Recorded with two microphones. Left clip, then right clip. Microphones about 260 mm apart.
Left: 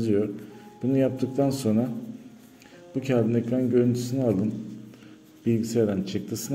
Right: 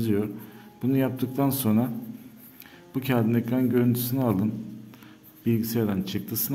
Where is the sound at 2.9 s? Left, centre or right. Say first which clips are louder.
Left 1 dB; centre.